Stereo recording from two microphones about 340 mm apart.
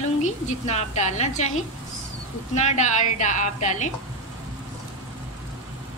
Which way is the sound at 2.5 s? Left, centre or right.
Centre.